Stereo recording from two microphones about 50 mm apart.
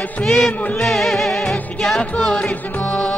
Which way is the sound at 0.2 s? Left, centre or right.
Centre.